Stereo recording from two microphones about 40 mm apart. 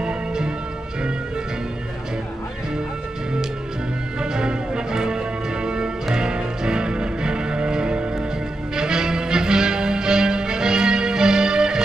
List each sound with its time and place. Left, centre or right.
0.0 s music: centre
4.2 s music: centre